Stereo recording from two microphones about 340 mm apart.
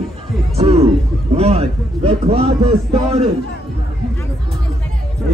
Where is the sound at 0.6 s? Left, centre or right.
Centre.